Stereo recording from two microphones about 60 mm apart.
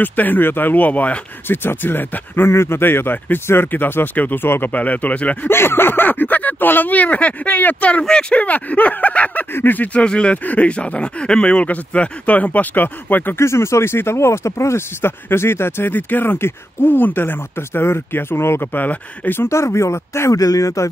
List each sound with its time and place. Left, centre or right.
0.0 s speech: left
1.5 s speech: left
2.5 s speech: left
5.5 s speech: left
8.0 s speech: centre
10.0 s speech: centre; by 13.4 s left
13.4 s speech: left
15.9 s speech: left
19.5 s speech: left
20.3 s speech: left